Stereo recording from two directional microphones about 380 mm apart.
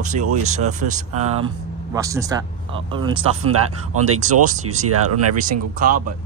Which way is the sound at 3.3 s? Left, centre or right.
Right.